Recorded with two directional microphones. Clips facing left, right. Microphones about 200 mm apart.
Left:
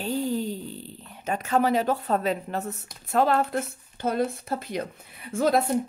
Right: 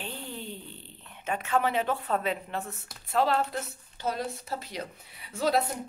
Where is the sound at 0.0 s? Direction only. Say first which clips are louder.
Left 12 dB; 40° left (ahead or behind).